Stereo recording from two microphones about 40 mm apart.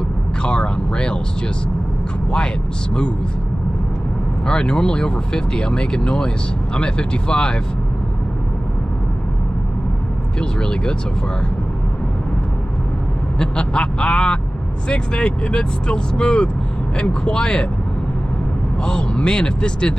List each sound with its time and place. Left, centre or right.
0.4 s speech: left
2.3 s speech: left
4.5 s speech: left
10.4 s speech: centre
13.4 s speech: left
18.9 s speech: left